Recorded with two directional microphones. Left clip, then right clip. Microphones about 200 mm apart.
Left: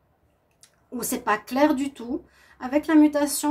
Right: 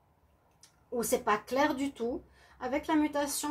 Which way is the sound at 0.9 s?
45° left (ahead or behind).